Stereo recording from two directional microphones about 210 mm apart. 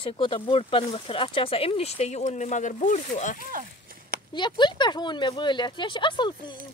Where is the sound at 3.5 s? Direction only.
45° right (ahead or behind).